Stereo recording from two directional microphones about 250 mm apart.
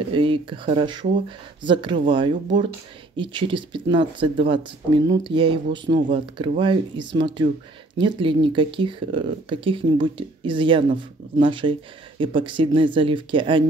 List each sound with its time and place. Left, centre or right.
0.1 s speech: centre